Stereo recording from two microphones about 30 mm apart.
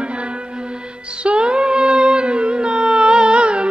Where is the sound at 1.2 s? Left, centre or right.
Right.